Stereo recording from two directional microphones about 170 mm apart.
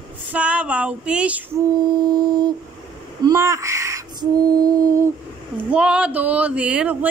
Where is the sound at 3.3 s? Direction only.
15° right (ahead or behind).